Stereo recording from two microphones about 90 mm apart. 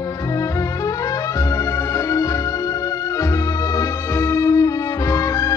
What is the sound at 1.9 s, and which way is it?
Organ, 35° left (ahead or behind).